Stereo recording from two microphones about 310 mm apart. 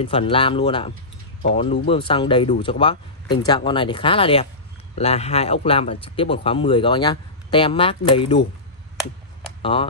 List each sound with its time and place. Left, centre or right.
0.0 s speech: centre
9.6 s speech: centre